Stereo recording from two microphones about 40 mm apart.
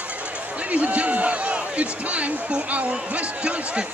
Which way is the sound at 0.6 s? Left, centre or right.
Right.